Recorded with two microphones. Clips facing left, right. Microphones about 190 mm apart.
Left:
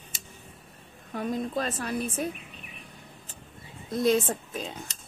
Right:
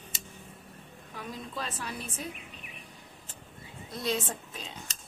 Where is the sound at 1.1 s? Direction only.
50° left (ahead or behind).